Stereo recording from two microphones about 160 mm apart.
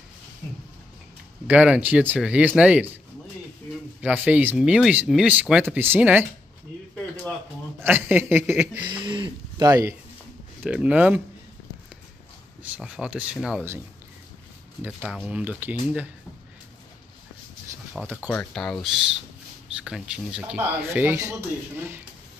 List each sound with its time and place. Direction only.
1.5 s speech: 10° right (ahead or behind)
4.0 s speech: 10° right (ahead or behind)
7.8 s speech: 15° right (ahead or behind)
8.8 s a sound: 30° right (ahead or behind)
9.7 s speech: 20° right (ahead or behind)
10.6 s speech: 10° right (ahead or behind)
12.6 s speech: 5° right (ahead or behind)
14.8 s speech: 10° right (ahead or behind)
18.0 s speech: 10° right (ahead or behind)
18.3 s speech: 5° left (ahead or behind); by 22.0 s 15° right (ahead or behind)